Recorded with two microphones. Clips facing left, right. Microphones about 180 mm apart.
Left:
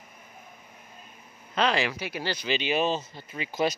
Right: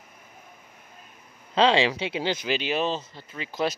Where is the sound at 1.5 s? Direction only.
30° right (ahead or behind).